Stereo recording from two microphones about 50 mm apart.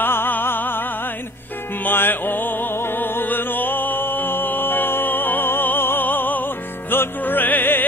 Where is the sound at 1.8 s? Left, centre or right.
Left.